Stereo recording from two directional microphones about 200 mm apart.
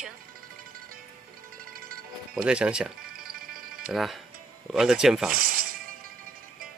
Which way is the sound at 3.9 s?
Centre (ahead or behind).